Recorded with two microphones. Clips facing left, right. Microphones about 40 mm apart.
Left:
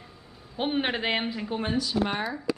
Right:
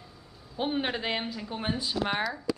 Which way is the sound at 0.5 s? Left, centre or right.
Left.